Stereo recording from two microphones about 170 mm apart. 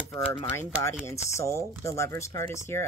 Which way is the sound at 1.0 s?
15° left (ahead or behind).